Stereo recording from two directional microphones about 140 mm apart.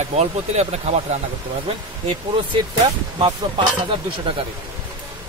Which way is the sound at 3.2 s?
40° right (ahead or behind).